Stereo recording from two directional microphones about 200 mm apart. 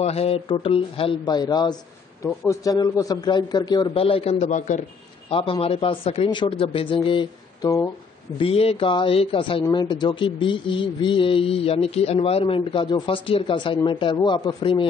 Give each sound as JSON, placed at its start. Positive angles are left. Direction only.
{"t": 0.0, "sound": "speech", "side_deg": 30}
{"t": 5.3, "sound": "speech", "side_deg": 25}
{"t": 8.4, "sound": "speech", "side_deg": 30}